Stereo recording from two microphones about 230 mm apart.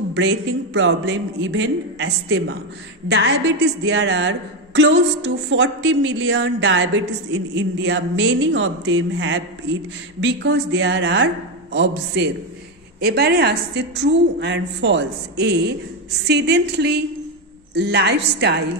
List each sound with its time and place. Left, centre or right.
0.1 s a woman's voice: right